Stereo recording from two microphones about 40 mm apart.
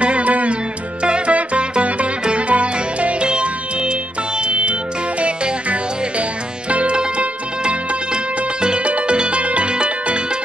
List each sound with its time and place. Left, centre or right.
0.0 s music: right